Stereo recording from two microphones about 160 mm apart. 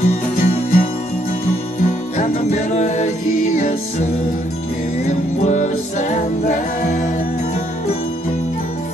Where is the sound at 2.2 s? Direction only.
45° left (ahead or behind).